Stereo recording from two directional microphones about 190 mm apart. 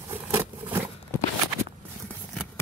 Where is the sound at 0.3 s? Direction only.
10° right (ahead or behind).